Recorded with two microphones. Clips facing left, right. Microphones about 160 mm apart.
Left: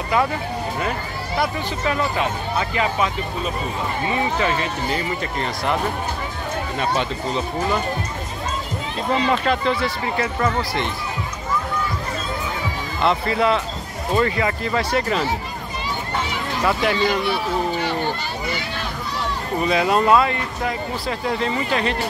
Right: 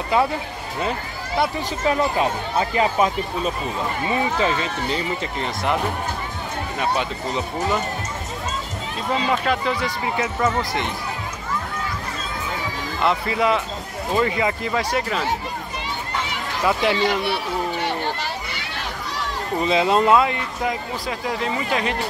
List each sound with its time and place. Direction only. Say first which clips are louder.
1.4 s speech: right 2 dB; 30° right (ahead or behind)
4.9 s speech: left 1 dB; 15° right (ahead or behind)
9.2 s speech: left 1 dB; 5° right (ahead or behind)
13.0 s speech: left 1 dB; 10° right (ahead or behind)
16.6 s speech: right 1 dB; 15° right (ahead or behind)
19.6 s speech: even; 25° right (ahead or behind)